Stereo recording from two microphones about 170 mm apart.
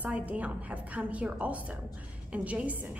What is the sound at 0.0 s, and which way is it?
A woman's voice, 10° right (ahead or behind).